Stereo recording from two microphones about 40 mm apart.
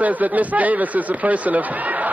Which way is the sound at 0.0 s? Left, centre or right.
Right.